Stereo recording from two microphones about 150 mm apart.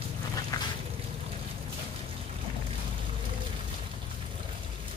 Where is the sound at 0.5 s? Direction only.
25° left (ahead or behind).